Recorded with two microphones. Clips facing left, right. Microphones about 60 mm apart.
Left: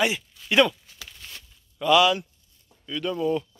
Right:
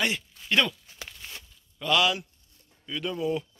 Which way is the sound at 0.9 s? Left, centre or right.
Right.